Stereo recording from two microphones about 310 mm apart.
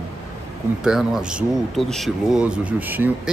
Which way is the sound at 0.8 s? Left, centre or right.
Centre.